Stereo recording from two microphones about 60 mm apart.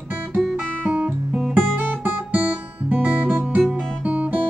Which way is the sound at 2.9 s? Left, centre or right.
Right.